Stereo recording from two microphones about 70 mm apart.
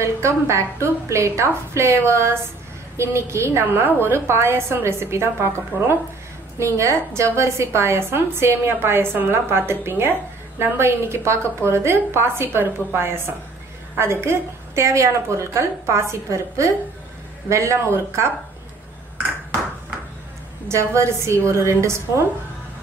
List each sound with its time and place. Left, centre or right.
0.0 s a woman's voice: right
20.6 s a woman's voice: right